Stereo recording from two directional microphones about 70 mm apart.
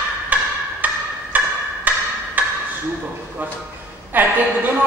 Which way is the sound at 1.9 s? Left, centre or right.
Right.